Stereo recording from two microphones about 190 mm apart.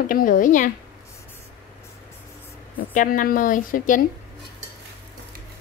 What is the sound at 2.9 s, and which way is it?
A woman's voice, 45° left (ahead or behind).